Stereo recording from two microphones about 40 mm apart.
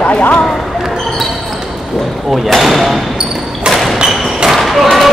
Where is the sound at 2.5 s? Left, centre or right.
Centre.